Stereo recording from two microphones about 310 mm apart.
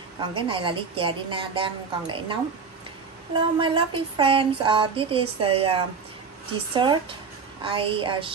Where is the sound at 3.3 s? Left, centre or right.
Centre.